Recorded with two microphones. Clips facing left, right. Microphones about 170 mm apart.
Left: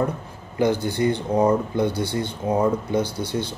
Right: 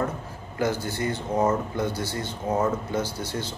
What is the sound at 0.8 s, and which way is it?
Speech, 15° left (ahead or behind).